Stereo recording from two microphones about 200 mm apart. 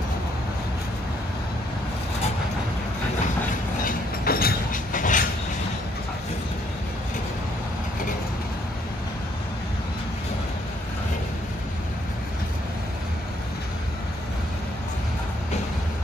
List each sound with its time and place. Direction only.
3.8 s train: 50° left (ahead or behind)